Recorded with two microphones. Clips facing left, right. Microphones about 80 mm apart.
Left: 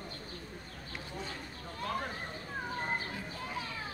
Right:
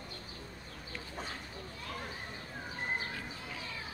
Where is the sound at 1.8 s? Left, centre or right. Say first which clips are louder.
Left 8 dB; left.